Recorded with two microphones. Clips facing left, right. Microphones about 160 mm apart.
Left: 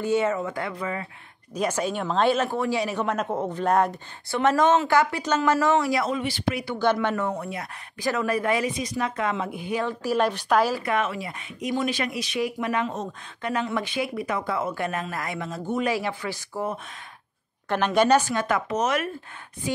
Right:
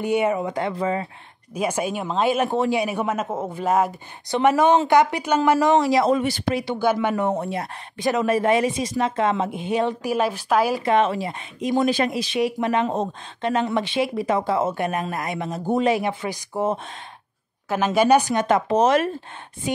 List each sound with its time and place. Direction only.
0.0 s speech: 15° right (ahead or behind)
1.5 s speech: 10° right (ahead or behind)
6.0 s speech: 45° right (ahead or behind)
6.5 s speech: 20° right (ahead or behind)
6.8 s speech: 10° right (ahead or behind)
7.2 s speech: 30° right (ahead or behind)
10.1 s a woman's voice: 5° right (ahead or behind)
10.7 s speech: 25° right (ahead or behind)
15.6 s speech: 35° right (ahead or behind)
15.9 s speech: 20° right (ahead or behind)
17.6 s speech: 5° right (ahead or behind); by 19.0 s 30° right (ahead or behind)